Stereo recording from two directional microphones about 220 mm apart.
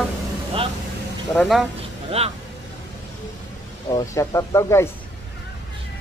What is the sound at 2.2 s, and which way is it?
Speech, 30° right (ahead or behind).